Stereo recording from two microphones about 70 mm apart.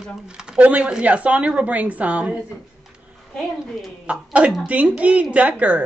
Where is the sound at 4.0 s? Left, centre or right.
Centre.